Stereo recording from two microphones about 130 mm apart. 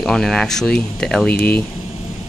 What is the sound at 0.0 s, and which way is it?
Speech, 5° left (ahead or behind).